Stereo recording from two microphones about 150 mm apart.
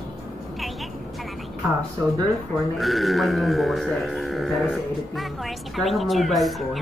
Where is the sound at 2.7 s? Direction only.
Centre (ahead or behind).